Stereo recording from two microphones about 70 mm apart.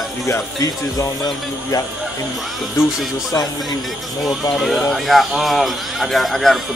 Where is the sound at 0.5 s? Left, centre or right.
Left.